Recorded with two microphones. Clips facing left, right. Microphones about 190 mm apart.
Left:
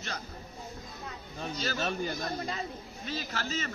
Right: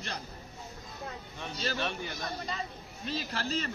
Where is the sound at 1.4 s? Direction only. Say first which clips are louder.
Left 1 dB; 40° left (ahead or behind).